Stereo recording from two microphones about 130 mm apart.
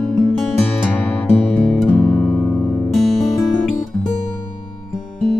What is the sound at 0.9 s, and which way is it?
Music, 15° left (ahead or behind).